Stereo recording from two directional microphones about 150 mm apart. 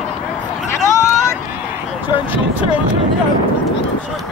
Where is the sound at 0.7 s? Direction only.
20° left (ahead or behind).